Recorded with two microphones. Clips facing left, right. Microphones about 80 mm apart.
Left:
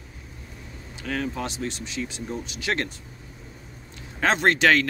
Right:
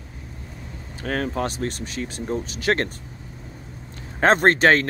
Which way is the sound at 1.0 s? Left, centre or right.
Right.